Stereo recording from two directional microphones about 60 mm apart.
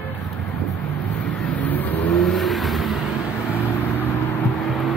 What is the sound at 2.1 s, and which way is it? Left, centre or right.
Vehicle, centre.